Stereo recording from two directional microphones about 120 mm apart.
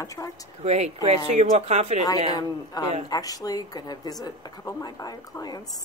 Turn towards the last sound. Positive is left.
turn(degrees=30)  # may be behind; listen again after turning